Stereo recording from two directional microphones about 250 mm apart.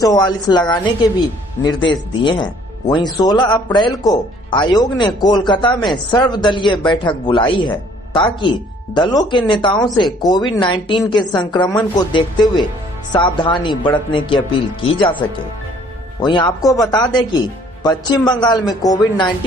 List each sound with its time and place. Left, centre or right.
0.0 s speech: centre
16.3 s speech: centre